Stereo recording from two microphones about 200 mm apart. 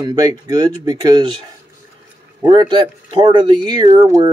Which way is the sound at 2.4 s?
25° right (ahead or behind).